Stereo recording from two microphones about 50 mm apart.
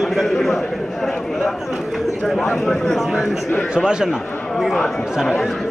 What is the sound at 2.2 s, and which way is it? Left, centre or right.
Speech, centre.